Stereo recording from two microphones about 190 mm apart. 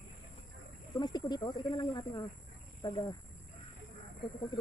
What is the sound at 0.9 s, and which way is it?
Speech, 20° left (ahead or behind).